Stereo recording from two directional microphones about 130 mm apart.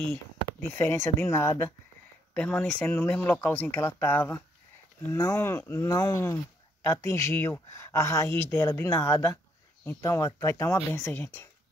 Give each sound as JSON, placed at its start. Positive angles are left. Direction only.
{"t": 0.1, "sound": "speech", "side_deg": 15}